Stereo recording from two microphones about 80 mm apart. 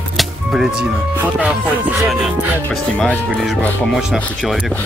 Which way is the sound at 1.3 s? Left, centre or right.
Centre.